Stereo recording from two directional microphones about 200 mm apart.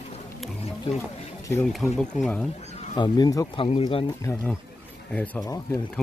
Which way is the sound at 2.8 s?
20° left (ahead or behind).